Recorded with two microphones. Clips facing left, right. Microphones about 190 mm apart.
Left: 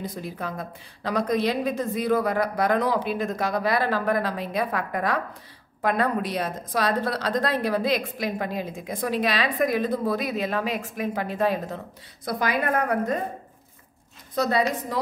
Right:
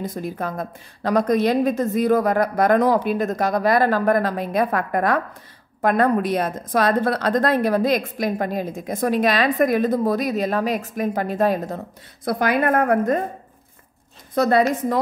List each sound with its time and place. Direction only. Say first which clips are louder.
0.0 s a woman's voice: right 5 dB; 45° right (ahead or behind)
12.3 s a woman's voice: right 6 dB; 55° right (ahead or behind)
14.3 s a woman's voice: right 6 dB; 55° right (ahead or behind)